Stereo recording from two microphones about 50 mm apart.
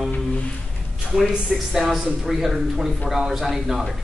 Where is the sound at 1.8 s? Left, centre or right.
Centre.